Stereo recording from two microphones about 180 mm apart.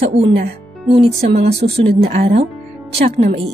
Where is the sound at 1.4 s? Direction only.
35° right (ahead or behind).